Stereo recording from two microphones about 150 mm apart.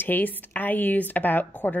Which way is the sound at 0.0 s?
10° left (ahead or behind).